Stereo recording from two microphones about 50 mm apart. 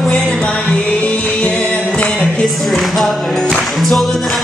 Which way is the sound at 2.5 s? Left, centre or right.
Centre.